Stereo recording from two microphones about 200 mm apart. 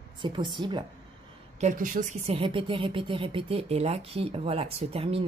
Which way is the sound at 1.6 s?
40° right (ahead or behind).